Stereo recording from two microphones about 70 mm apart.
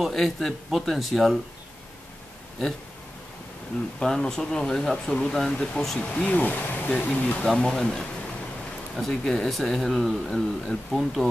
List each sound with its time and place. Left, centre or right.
0.0 s speech: centre
4.0 s speech: centre
5.9 s speech: centre
6.9 s speech: centre